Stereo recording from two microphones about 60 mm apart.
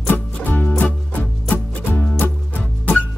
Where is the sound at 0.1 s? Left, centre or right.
Left.